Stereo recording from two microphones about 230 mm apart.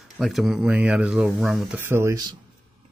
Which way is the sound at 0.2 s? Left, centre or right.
Centre.